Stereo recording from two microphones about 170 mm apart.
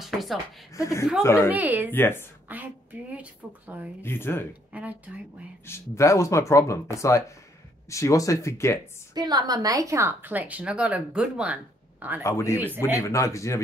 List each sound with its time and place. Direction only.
0.0 s a sound: centre (ahead or behind)
0.7 s speech: 15° left (ahead or behind)
1.5 s speech: 10° right (ahead or behind)
1.9 s speech: 15° left (ahead or behind)
2.4 s speech: 10° right (ahead or behind)
4.0 s speech: 15° left (ahead or behind)
4.7 s speech: 10° right (ahead or behind)
5.7 s speech: 15° left (ahead or behind)
9.1 s speech: 25° right (ahead or behind); by 12.2 s 10° right (ahead or behind)
12.2 s speech: 15° left (ahead or behind)
12.6 s speech: 10° right (ahead or behind)
12.9 s speech: 20° left (ahead or behind)